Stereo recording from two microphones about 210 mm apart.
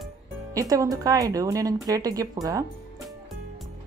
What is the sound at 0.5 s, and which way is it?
Speech, 15° right (ahead or behind).